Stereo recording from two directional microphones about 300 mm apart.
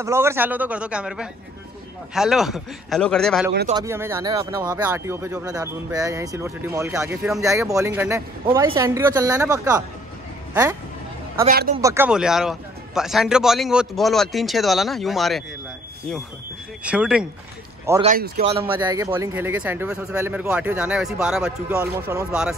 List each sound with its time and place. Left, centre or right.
0.0 s speech: centre
3.7 s speech: centre
11.4 s speech: right
11.8 s speech: centre
16.8 s speech: centre
18.0 s speech: right; by 22.6 s centre